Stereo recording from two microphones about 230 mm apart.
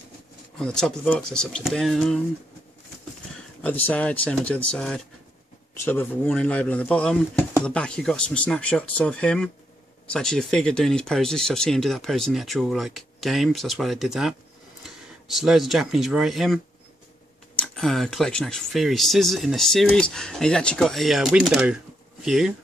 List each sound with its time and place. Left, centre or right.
0.6 s speech: centre
3.6 s speech: centre